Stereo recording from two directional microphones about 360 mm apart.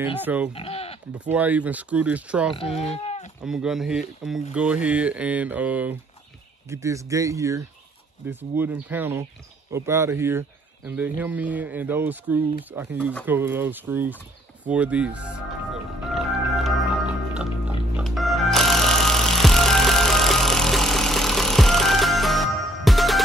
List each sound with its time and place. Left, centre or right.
0.0 s speech: centre
0.6 s sheep: centre
1.2 s speech: centre
2.5 s speech: centre
3.4 s speech: centre
16.2 s music: centre